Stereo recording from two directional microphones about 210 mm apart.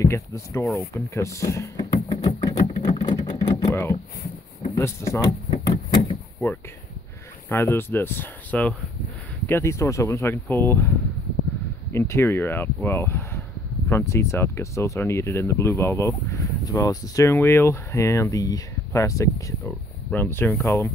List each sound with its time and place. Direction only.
0.0 s speech: 15° left (ahead or behind)
1.1 s a sound: 15° left (ahead or behind)
3.7 s speech: 10° left (ahead or behind)
5.5 s power windows: 20° left (ahead or behind)
7.4 s speech: 10° left (ahead or behind)
11.9 s speech: 10° left (ahead or behind)